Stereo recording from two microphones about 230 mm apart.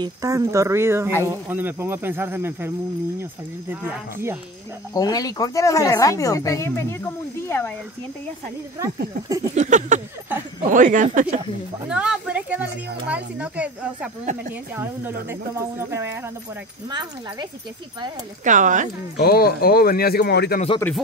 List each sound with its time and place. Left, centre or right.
0.0 s speech: centre
4.9 s speech: centre
8.7 s speech: centre
9.6 s speech: right
11.9 s speech: centre
18.4 s speech: right
19.1 s speech: left